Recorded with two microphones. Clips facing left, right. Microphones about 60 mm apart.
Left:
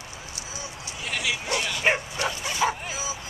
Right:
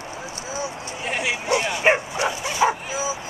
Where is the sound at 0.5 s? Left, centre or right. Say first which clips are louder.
Right 9 dB; right.